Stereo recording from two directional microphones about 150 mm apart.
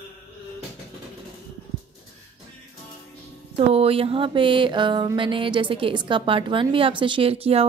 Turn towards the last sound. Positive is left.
turn(degrees=-40)  # may be behind; listen again after turning